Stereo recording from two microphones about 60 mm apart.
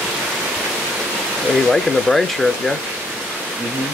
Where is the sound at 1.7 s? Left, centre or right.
Centre.